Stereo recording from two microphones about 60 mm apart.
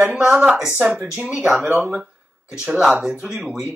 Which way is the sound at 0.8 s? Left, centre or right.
Centre.